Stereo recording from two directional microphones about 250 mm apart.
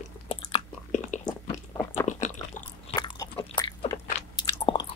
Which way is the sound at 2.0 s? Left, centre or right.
Left.